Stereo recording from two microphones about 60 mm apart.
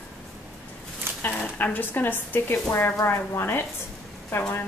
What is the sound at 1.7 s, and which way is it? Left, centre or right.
Speech, left.